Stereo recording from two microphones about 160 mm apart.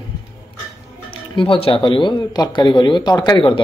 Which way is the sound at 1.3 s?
35° left (ahead or behind).